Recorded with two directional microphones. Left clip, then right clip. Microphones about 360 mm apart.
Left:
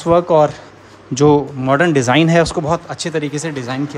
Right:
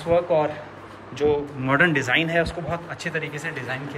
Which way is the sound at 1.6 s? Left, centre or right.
Centre.